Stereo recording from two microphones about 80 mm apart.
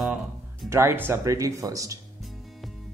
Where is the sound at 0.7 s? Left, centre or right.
Right.